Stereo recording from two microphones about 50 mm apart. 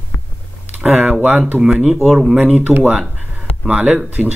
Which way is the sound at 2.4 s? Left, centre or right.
Right.